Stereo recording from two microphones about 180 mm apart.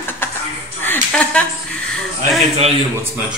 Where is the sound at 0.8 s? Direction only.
10° left (ahead or behind).